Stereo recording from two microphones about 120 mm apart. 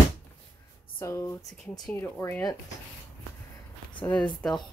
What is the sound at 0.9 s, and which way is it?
Speech, 20° left (ahead or behind).